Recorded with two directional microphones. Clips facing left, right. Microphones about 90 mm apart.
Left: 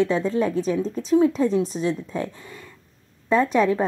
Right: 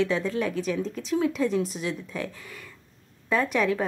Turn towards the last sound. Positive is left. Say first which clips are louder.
# left 5 dB
turn(degrees=30)  # may be behind; listen again after turning